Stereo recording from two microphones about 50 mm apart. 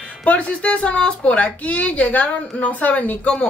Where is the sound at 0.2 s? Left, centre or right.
Left.